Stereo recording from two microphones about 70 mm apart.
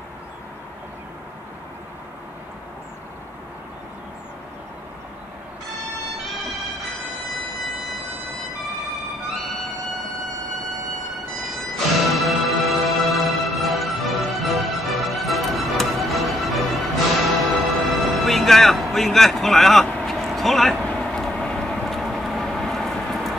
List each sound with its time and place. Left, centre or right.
11.6 s music: centre
20.8 s vehicle: centre